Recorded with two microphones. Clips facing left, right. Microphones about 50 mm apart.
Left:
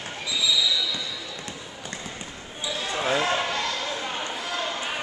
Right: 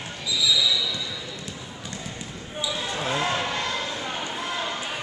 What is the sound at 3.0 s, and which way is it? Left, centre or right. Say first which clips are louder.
Basketball bounce: left 3 dB; centre.